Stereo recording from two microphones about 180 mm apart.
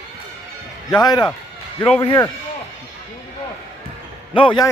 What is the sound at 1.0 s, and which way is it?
Speech, 25° left (ahead or behind).